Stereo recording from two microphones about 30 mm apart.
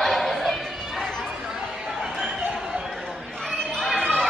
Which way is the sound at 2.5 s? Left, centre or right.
Centre.